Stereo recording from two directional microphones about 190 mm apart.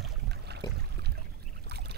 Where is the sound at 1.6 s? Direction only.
60° right (ahead or behind).